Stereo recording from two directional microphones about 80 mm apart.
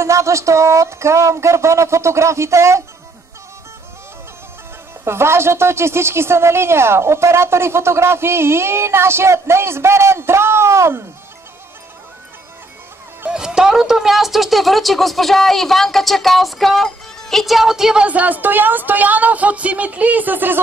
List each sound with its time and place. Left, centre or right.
0.0 s a woman's voice: right
5.0 s a woman's voice: right
13.3 s speech: centre
18.0 s speech: centre